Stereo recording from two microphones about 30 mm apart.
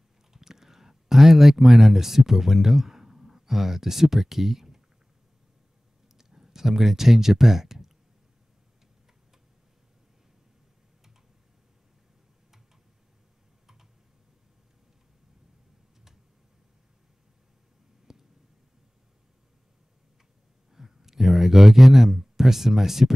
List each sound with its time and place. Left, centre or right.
0.3 s speech: centre
6.1 s speech: centre
18.1 s a sound: centre
20.7 s speech: centre